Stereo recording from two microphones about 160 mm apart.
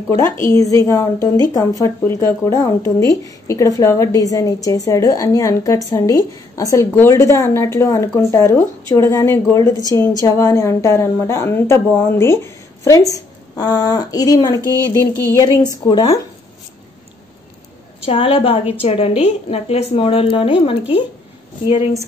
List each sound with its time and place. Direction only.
0.2 s a woman's voice: 20° left (ahead or behind)
18.0 s a woman's voice: 35° left (ahead or behind)